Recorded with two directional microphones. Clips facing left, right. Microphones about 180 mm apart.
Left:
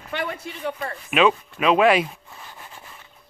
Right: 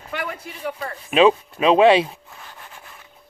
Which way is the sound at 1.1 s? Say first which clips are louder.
Right 4 dB; 30° right (ahead or behind).